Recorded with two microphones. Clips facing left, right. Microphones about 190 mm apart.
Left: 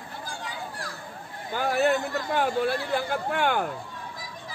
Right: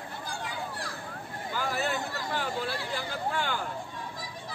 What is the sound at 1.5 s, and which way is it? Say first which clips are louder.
Speech: left 8 dB; 55° left (ahead or behind).